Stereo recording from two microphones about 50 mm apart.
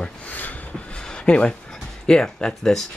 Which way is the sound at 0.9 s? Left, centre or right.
Centre.